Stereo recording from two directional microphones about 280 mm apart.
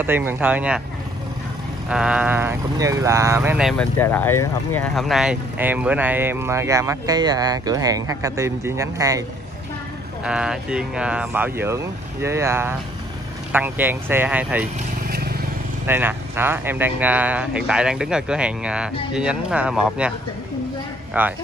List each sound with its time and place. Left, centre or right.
0.0 s speech: centre
1.9 s speech: centre
10.2 s speech: centre
15.0 s vehicle: right
15.9 s speech: centre
21.2 s speech: centre